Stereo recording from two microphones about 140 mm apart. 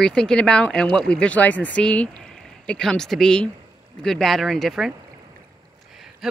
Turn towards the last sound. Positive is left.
turn(degrees=0)  # may be behind; listen again after turning